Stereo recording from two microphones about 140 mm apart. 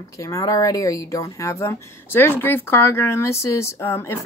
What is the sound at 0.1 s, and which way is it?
Speech, 25° left (ahead or behind).